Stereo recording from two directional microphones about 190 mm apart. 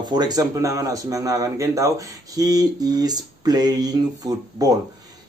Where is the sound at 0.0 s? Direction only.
20° right (ahead or behind).